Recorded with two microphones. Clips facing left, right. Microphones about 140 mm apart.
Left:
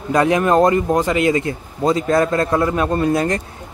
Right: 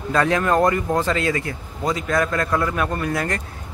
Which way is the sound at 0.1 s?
20° left (ahead or behind).